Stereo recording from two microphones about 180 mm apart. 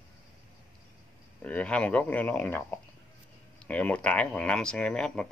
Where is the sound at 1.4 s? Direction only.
10° left (ahead or behind).